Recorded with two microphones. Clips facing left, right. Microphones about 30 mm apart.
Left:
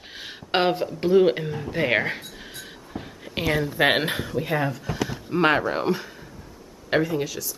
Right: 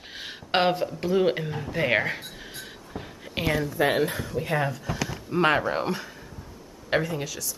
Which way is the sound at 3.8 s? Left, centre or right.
Left.